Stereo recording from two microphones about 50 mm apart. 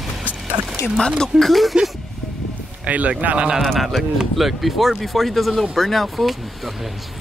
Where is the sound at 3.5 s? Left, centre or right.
Centre.